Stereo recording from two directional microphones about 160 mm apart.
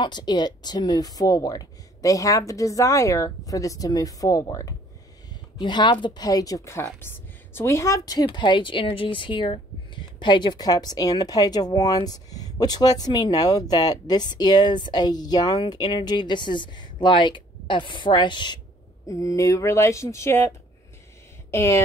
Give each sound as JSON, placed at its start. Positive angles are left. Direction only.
{"t": 0.0, "sound": "a woman's voice", "side_deg": 25}